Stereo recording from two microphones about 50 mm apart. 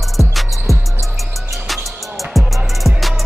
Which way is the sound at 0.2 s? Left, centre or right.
Centre.